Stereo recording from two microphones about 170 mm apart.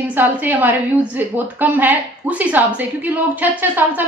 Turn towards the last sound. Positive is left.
turn(degrees=-10)  # may be behind; listen again after turning